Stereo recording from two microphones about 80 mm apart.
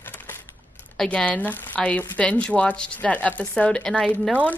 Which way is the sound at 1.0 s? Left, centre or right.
Centre.